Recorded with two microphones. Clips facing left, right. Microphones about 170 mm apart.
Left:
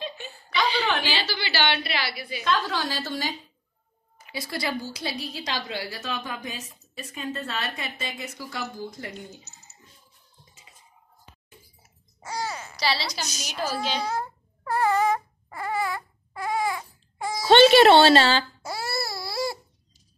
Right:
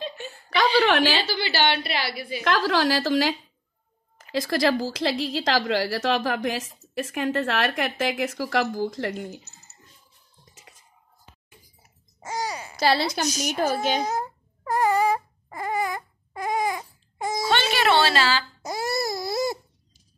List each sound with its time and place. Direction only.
0.5 s a sound: 55° right (ahead or behind)
0.8 s a woman's voice: 90° right
1.5 s a woman's voice: 45° right (ahead or behind)
2.4 s a woman's voice: 90° right
12.4 s a sound: 15° right (ahead or behind)
12.7 s a woman's voice: 50° right (ahead or behind)
14.0 s a sound: 15° right (ahead or behind)
17.5 s speech: 30° left (ahead or behind)
18.6 s babbling: 15° right (ahead or behind)